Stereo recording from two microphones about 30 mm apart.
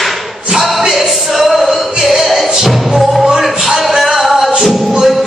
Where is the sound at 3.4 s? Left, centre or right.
Centre.